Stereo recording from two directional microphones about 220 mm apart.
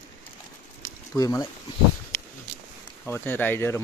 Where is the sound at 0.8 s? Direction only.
15° left (ahead or behind).